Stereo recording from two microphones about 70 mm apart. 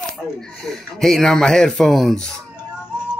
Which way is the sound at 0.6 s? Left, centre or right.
Centre.